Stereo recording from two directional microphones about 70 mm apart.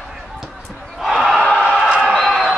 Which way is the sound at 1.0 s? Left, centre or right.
Centre.